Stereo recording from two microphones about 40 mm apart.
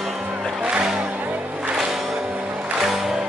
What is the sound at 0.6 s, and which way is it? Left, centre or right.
Music, right.